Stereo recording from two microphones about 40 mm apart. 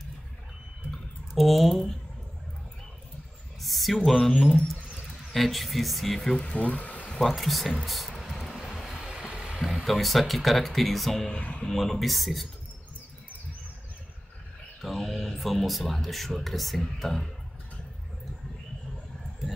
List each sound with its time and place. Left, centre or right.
1.3 s speech: centre
3.6 s a sound: centre
4.4 s speech: centre
6.5 s speech: left
7.2 s speech: centre
7.8 s a sound: centre
8.7 s vehicle: centre
9.8 s speech: centre
14.8 s speech: centre